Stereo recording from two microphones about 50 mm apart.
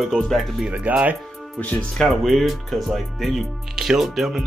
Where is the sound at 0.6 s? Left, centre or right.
Right.